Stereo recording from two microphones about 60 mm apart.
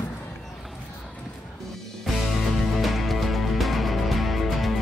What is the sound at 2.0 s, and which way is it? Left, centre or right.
Music, centre.